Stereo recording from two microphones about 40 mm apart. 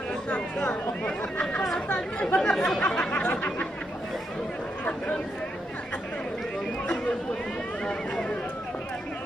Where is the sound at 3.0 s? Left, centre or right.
Left.